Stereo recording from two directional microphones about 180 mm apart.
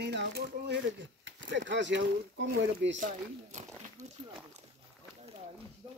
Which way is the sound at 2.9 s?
45° right (ahead or behind).